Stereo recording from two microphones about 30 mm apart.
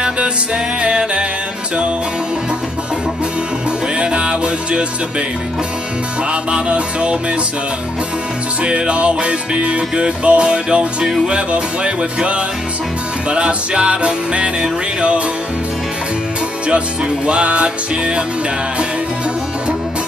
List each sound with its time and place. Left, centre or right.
0.8 s music: right
4.1 s music: right
6.5 s music: right
8.6 s music: right
13.3 s music: right
17.3 s music: right